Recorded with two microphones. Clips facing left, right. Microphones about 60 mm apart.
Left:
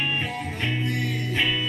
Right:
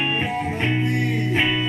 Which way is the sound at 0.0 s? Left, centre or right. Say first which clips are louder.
Right 5 dB; right.